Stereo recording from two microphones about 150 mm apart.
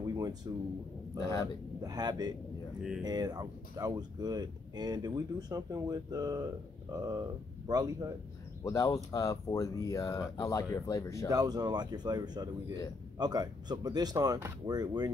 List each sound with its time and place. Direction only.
0.5 s speech: 25° right (ahead or behind)
1.2 s speech: 20° left (ahead or behind)
1.8 s speech: 25° right (ahead or behind)
8.6 s speech: 20° left (ahead or behind)
11.2 s speech: 25° right (ahead or behind)